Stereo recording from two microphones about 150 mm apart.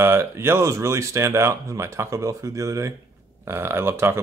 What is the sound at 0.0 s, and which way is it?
Speech, 15° right (ahead or behind).